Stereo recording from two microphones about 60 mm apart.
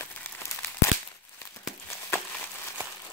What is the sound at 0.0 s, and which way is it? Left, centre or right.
Crumpling, left.